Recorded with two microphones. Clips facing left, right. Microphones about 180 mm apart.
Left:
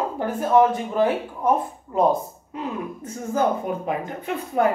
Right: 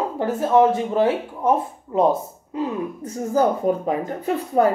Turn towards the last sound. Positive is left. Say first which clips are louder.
# right 3 dB
turn(degrees=-35)  # may be behind; listen again after turning